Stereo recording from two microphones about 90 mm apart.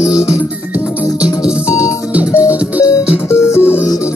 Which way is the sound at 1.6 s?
35° left (ahead or behind).